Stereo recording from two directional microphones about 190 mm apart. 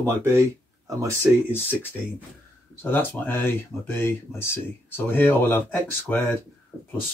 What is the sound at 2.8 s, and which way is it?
Speech, 10° left (ahead or behind).